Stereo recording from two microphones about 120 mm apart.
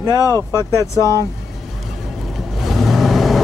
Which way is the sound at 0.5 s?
25° left (ahead or behind).